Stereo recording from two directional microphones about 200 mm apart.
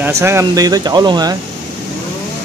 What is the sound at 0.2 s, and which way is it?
Speech, 15° right (ahead or behind).